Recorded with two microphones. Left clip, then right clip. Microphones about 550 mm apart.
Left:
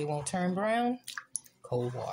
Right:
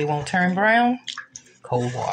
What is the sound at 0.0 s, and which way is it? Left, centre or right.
Speech, left.